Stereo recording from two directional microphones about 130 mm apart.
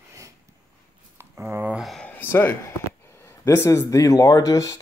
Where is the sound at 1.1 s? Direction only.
15° right (ahead or behind).